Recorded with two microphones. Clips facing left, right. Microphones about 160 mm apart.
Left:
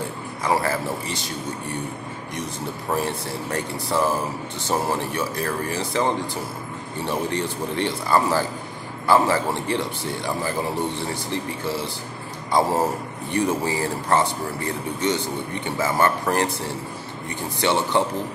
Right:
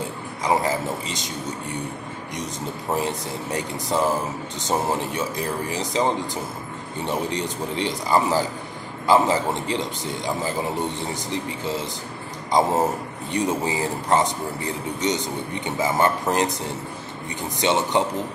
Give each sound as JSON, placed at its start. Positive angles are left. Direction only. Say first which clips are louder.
{"t": 0.4, "sound": "speech", "louder": "right 1 dB", "side_deg": -20}
{"t": 2.9, "sound": "speech", "louder": "even", "side_deg": -15}